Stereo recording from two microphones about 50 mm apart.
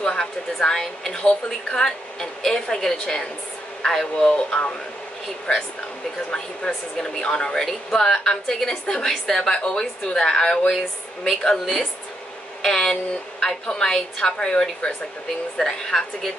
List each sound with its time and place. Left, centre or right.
0.0 s a woman's voice: centre
1.1 s a woman's voice: left
1.8 s speech: centre
6.3 s speech: centre